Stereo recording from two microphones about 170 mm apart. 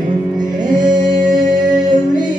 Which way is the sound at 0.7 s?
25° right (ahead or behind).